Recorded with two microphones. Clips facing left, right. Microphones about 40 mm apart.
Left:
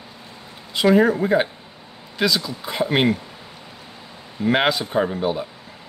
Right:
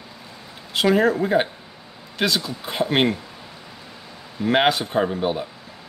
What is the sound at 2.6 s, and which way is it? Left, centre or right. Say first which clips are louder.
Speech: even; centre.